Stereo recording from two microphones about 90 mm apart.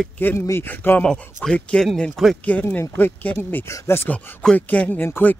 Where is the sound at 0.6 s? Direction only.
25° left (ahead or behind).